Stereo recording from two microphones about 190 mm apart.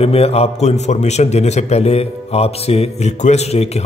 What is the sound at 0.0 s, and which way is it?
A man's voice, 30° left (ahead or behind).